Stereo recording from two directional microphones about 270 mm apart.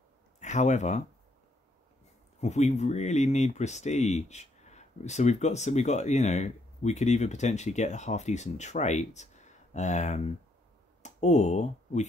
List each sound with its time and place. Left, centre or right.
0.4 s speech: left
2.4 s speech: left